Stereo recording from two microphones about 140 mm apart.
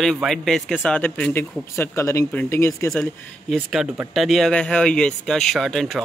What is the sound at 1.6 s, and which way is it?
Speech, 20° left (ahead or behind).